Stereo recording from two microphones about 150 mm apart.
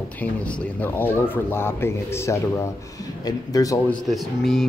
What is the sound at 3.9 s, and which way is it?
Speech, centre (ahead or behind).